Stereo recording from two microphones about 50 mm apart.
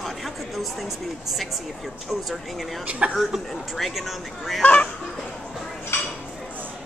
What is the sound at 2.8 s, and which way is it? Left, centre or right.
Speech, right.